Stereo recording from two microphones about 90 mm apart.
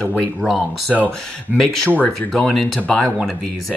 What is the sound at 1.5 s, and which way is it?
Speech, 15° right (ahead or behind).